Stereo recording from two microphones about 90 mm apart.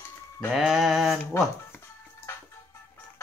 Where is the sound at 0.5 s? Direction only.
5° right (ahead or behind).